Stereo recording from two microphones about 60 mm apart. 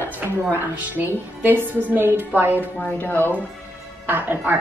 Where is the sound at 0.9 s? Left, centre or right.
Right.